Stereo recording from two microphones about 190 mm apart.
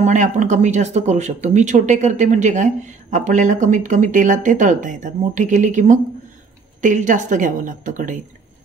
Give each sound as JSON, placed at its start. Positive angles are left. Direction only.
{"t": 0.0, "sound": "a woman's voice", "side_deg": -40}